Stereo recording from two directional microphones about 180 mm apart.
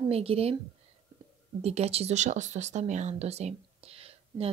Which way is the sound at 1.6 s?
35° right (ahead or behind).